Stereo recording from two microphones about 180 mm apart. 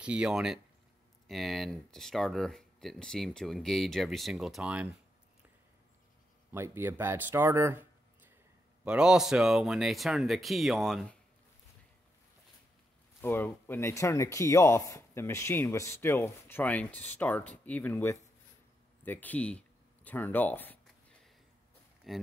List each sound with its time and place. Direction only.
0.0 s speech: 5° right (ahead or behind)
6.5 s speech: 15° right (ahead or behind)
8.8 s speech: 5° right (ahead or behind)
13.2 s speech: 10° left (ahead or behind)
19.0 s a sound: 10° left (ahead or behind)
22.1 s speech: centre (ahead or behind)